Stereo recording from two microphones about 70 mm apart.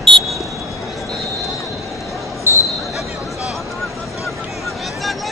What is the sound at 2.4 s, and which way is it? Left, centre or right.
Basketball bounce, left.